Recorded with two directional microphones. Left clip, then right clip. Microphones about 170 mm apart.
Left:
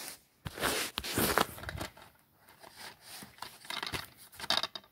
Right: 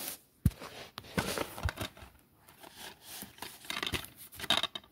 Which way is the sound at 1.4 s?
20° left (ahead or behind).